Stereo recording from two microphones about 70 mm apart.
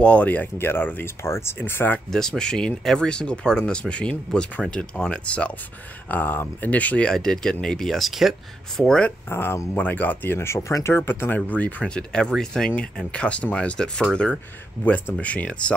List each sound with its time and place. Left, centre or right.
0.0 s speech: centre
2.0 s speech: centre
8.7 s speech: centre
9.3 s speech: left
9.8 s speech: left
11.8 s speech: centre
15.1 s speech: centre